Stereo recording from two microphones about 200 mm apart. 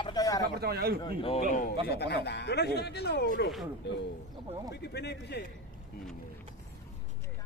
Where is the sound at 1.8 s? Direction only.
55° left (ahead or behind).